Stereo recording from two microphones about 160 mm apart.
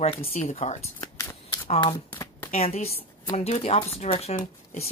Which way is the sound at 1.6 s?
35° left (ahead or behind).